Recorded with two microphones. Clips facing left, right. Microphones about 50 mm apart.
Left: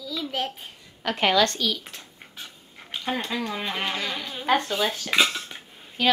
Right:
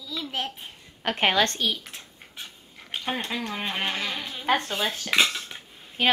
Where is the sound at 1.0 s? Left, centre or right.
Right.